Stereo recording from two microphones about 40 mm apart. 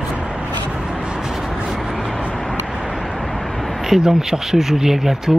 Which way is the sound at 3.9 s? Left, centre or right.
Centre.